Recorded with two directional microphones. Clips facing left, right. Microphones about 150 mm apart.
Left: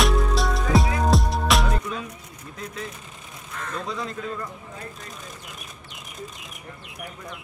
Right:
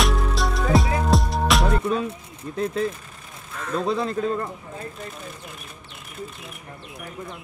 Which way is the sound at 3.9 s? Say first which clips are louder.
Right 10 dB; 35° right (ahead or behind).